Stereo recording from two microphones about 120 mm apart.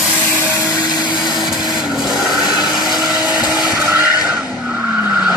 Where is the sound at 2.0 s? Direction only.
35° left (ahead or behind).